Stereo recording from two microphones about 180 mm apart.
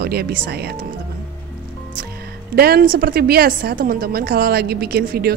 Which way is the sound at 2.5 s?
60° right (ahead or behind).